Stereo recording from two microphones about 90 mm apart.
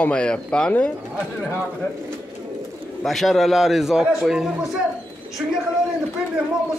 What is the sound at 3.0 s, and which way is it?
A man's voice, centre (ahead or behind).